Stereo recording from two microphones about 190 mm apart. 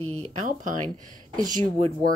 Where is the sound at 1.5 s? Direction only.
45° right (ahead or behind).